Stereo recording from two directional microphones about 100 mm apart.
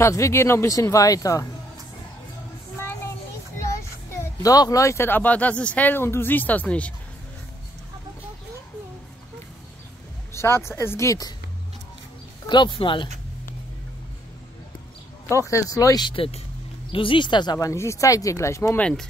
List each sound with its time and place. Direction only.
0.0 s speech: 30° left (ahead or behind)
2.8 s child singing: 25° left (ahead or behind)
3.5 s speech: 30° left (ahead or behind); by 6.9 s 15° left (ahead or behind)
10.3 s speech: 25° left (ahead or behind)
12.4 s speech: 50° left (ahead or behind)
15.2 s speech: 30° left (ahead or behind)
16.0 s speech: 55° left (ahead or behind)
17.6 s speech: 30° left (ahead or behind)
18.8 s speech: 10° left (ahead or behind)